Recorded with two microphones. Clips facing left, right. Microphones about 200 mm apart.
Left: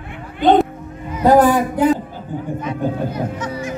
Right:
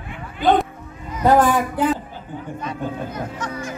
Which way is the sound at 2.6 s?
10° left (ahead or behind).